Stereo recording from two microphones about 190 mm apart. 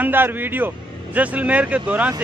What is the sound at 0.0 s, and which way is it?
Speech, 10° right (ahead or behind).